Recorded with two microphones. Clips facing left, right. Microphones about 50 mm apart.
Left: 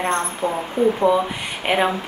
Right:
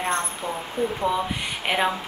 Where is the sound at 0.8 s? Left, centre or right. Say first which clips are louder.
Left 8 dB; left.